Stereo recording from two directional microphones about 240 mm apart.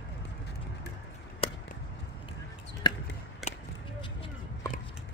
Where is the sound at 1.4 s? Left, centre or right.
Left.